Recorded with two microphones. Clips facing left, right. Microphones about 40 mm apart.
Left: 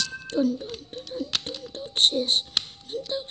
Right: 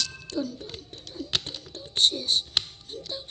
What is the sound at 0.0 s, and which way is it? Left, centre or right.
Music, left.